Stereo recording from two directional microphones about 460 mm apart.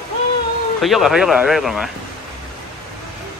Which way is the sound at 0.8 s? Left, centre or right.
Centre.